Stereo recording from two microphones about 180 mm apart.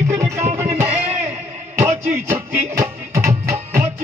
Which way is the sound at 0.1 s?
15° right (ahead or behind).